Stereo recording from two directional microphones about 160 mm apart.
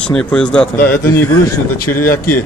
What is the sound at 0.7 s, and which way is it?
Speech, 70° left (ahead or behind).